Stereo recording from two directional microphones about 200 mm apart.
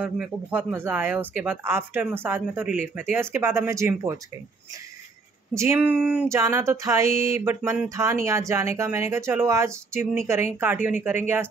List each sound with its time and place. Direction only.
0.0 s speech: 5° right (ahead or behind)
5.5 s speech: 15° right (ahead or behind)
7.1 s a sound: 45° right (ahead or behind)
7.3 s speech: 10° right (ahead or behind)